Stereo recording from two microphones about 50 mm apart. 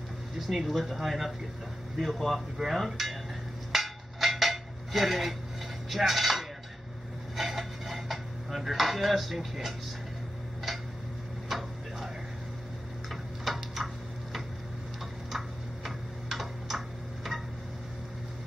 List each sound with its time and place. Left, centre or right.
0.4 s speech: centre
3.7 s dishes: centre
5.9 s speech: centre
7.3 s dishes: centre
11.4 s a sound: centre
13.1 s tick-tock: centre
15.3 s tick-tock: centre